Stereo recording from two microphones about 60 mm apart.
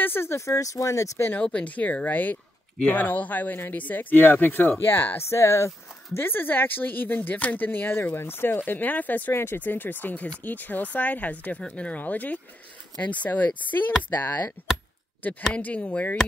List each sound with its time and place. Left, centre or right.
0.0 s speech: left
0.5 s speech: left
1.4 s speech: left
5.3 s speech: left
6.1 s speech: left
9.3 s speech: left
9.6 s speech: left
15.2 s speech: left